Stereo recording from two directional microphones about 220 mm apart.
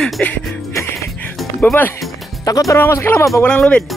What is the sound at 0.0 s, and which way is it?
Music, centre (ahead or behind).